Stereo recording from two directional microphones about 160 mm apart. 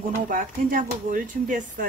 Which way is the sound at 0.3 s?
60° right (ahead or behind).